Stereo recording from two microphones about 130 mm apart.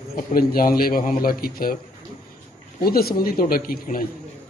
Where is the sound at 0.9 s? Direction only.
90° left.